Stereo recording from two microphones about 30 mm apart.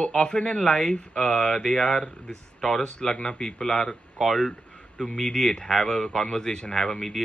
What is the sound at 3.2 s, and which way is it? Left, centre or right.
Speech, left.